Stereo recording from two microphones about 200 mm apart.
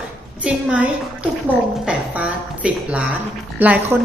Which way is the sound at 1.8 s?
5° right (ahead or behind).